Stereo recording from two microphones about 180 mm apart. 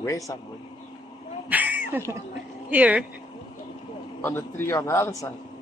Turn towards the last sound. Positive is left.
turn(degrees=15)  # may be behind; listen again after turning